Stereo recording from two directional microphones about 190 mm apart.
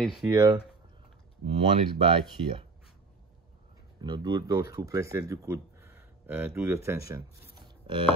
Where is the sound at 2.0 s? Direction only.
25° right (ahead or behind).